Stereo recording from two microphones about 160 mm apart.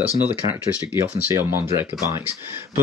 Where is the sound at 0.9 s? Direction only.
15° right (ahead or behind).